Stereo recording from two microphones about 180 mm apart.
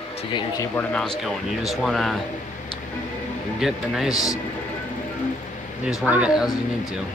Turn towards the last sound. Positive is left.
turn(degrees=-5)  # may be behind; listen again after turning